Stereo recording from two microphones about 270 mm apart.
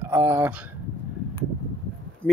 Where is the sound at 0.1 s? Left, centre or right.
Centre.